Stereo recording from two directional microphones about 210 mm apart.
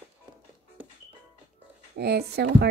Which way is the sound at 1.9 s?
50° right (ahead or behind).